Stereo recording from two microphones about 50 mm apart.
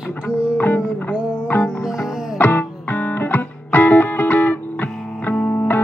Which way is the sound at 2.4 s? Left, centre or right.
Left.